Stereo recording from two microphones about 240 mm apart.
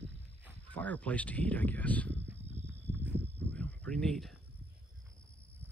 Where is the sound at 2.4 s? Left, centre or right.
Right.